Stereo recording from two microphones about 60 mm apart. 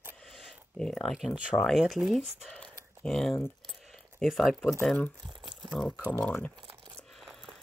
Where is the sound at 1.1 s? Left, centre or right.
Centre.